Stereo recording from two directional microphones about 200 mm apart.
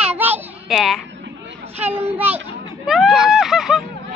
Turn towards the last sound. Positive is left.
turn(degrees=0)  # may be behind; listen again after turning